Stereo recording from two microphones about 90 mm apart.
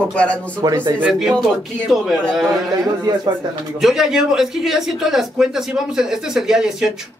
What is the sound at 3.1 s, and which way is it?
Speech, 45° right (ahead or behind).